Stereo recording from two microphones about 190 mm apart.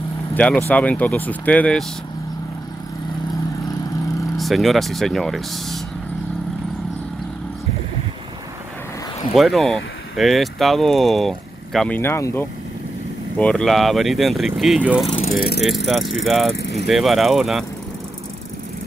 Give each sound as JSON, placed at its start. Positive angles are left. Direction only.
{"t": 0.3, "sound": "speech", "side_deg": 5}
{"t": 4.4, "sound": "speech", "side_deg": 0}
{"t": 9.3, "sound": "speech", "side_deg": 0}
{"t": 15.0, "sound": "mechanisms", "side_deg": 30}
{"t": 15.3, "sound": "speech", "side_deg": 50}
{"t": 15.6, "sound": "speech", "side_deg": 0}